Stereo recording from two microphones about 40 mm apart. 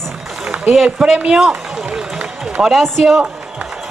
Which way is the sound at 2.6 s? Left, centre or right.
Centre.